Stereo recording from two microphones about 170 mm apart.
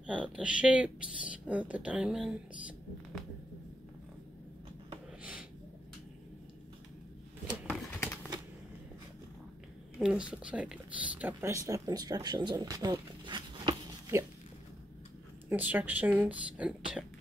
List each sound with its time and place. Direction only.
0.0 s speech: 5° right (ahead or behind)
8.0 s a sound: 10° left (ahead or behind)
9.9 s speech: 5° right (ahead or behind); by 13.7 s 25° right (ahead or behind)
15.5 s speech: 10° right (ahead or behind)